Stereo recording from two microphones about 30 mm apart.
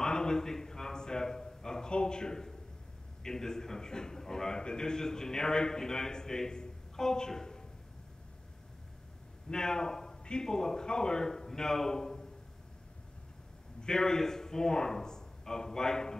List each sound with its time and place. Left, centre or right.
0.0 s a sound: left
1.9 s a man's voice: left
9.5 s a man's voice: left
13.7 s speech: left